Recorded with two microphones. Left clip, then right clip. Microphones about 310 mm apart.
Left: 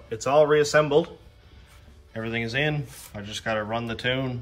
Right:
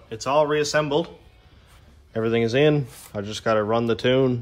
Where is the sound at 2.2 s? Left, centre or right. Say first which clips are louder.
Right 7 dB; centre.